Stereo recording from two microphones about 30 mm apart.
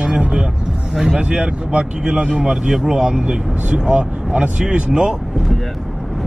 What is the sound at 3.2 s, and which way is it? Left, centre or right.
Speech, right.